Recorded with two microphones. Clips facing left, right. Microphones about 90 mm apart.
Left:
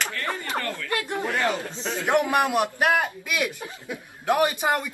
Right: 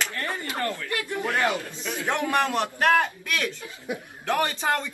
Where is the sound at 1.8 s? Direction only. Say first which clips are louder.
Left 6 dB; 25° left (ahead or behind).